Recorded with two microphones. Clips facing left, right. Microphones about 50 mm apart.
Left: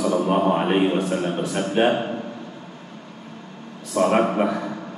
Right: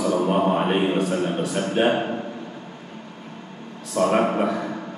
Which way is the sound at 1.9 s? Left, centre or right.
Centre.